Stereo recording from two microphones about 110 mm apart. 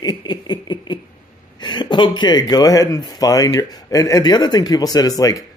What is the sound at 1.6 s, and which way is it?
Speech, 45° left (ahead or behind).